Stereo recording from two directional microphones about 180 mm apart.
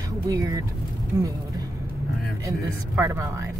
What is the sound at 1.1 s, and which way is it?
Speech, 20° right (ahead or behind).